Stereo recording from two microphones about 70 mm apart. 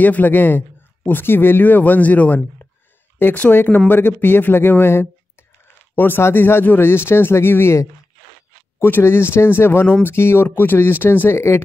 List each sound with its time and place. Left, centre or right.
0.0 s a man's voice: left